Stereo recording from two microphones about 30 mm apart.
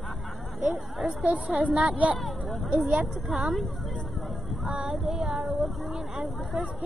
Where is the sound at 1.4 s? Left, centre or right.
Right.